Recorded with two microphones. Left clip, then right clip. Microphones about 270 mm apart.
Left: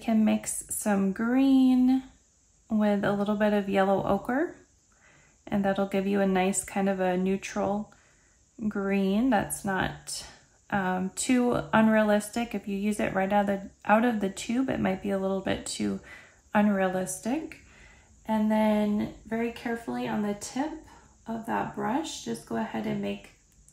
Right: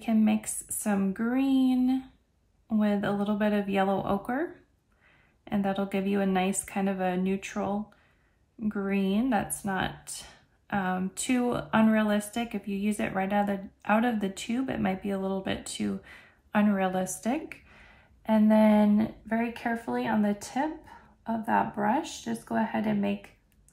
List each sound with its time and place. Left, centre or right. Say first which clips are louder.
0.0 s speech: left 1 dB; centre
18.2 s speech: right 3 dB; centre